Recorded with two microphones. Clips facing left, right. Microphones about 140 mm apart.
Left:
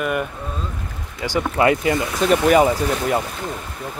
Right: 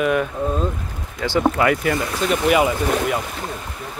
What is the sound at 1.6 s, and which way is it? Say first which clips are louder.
Speech: left 1 dB; 20° left (ahead or behind).